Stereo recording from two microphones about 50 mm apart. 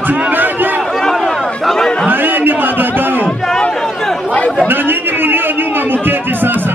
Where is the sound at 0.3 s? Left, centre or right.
Right.